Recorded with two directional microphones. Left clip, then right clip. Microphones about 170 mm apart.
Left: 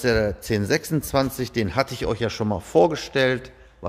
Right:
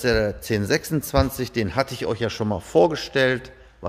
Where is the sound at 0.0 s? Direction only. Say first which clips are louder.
Even; 10° left (ahead or behind).